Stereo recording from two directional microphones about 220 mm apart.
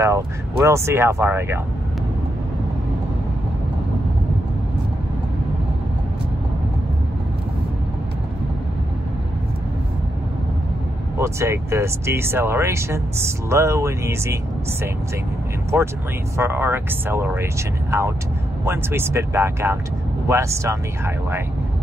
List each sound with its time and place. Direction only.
0.0 s speech: 15° right (ahead or behind)
11.1 s speech: 15° right (ahead or behind)
16.3 s speech: 10° right (ahead or behind)
18.7 s speech: 10° right (ahead or behind)